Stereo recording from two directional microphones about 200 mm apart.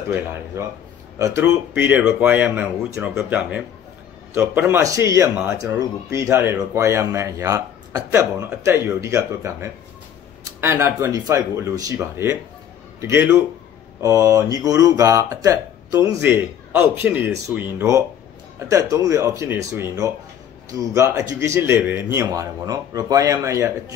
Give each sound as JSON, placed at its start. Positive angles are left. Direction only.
{"t": 0.1, "sound": "speech", "side_deg": -10}